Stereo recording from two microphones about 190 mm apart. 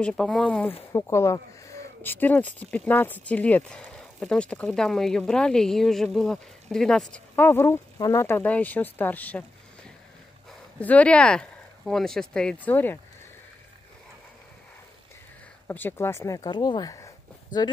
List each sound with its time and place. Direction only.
0.0 s speech: 5° left (ahead or behind)
10.8 s speech: 10° left (ahead or behind)
15.6 s speech: 10° left (ahead or behind)
17.5 s speech: 45° left (ahead or behind)